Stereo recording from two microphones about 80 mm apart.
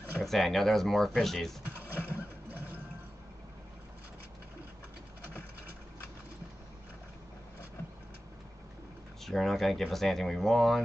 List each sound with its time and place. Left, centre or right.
0.2 s speech: centre
2.0 s a sound: right
9.2 s speech: centre